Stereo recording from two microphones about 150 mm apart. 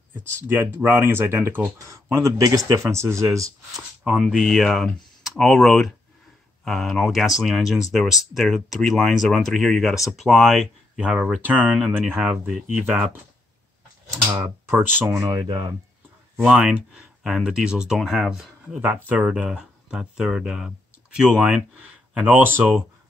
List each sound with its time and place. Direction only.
0.1 s speech: 15° right (ahead or behind)
3.7 s speech: 5° right (ahead or behind); by 15.6 s 30° right (ahead or behind)
16.3 s speech: 5° right (ahead or behind)